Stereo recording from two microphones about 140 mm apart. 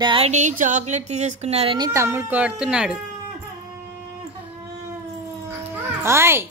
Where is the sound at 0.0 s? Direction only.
35° right (ahead or behind).